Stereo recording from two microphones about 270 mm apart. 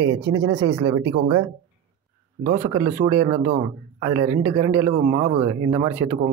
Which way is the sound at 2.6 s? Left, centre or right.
Centre.